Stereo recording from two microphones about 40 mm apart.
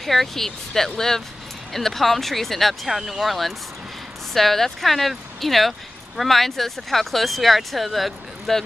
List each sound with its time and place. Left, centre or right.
0.0 s speech: centre